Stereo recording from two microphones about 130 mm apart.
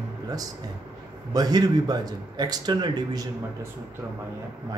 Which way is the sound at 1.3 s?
30° right (ahead or behind).